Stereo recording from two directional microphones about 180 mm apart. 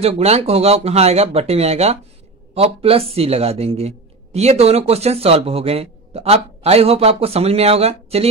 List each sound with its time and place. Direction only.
0.0 s speech: 35° right (ahead or behind)